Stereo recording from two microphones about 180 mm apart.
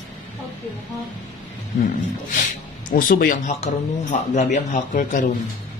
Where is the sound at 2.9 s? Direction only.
50° left (ahead or behind).